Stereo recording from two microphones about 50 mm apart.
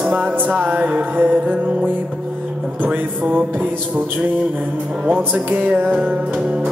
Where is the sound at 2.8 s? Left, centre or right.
Right.